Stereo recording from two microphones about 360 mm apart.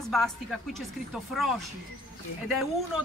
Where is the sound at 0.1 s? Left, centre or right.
Centre.